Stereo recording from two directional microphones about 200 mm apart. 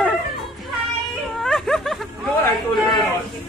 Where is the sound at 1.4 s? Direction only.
Centre (ahead or behind).